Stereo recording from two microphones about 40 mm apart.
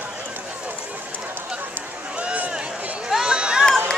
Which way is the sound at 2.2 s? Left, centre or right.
Right.